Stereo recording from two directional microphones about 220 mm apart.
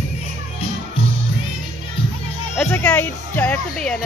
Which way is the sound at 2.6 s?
5° left (ahead or behind).